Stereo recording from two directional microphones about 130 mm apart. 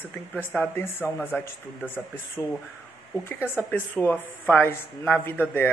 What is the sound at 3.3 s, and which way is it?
Speech, 10° right (ahead or behind).